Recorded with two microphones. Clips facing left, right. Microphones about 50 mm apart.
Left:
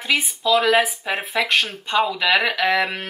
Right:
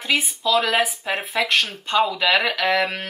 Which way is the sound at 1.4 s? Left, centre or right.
Left.